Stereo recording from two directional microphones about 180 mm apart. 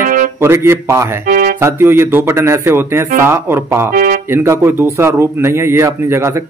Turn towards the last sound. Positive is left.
turn(degrees=-15)  # may be behind; listen again after turning